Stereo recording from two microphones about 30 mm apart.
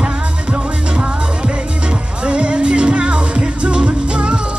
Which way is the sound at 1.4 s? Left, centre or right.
Right.